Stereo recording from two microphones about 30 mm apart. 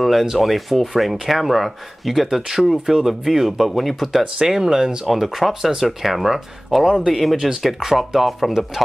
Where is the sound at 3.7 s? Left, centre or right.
Centre.